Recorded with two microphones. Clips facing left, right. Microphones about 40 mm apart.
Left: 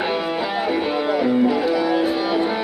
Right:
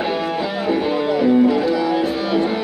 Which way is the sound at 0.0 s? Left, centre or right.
Centre.